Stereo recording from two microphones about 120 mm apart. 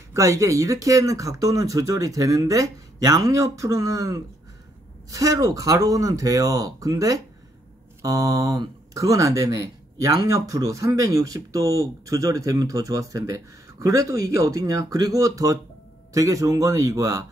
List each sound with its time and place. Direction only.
0.1 s speech: 25° right (ahead or behind)